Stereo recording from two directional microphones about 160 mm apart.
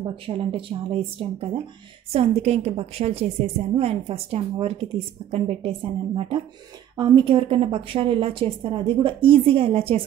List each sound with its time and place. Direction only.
0.0 s a woman's voice: 35° right (ahead or behind)